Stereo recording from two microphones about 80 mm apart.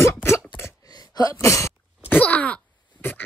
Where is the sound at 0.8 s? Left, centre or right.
Left.